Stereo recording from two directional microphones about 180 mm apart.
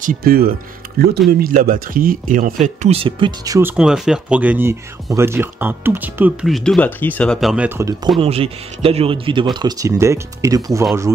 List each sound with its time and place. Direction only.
0.0 s speech: 50° right (ahead or behind)
1.4 s speech: 50° right (ahead or behind); by 3.7 s 20° right (ahead or behind)
3.7 s speech: 5° right (ahead or behind)
8.2 s speech: 30° right (ahead or behind)